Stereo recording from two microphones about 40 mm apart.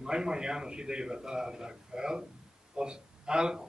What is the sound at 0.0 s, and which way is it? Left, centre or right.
A man's voice, centre.